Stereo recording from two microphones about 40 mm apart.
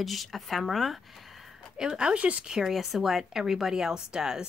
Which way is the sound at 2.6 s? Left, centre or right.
Centre.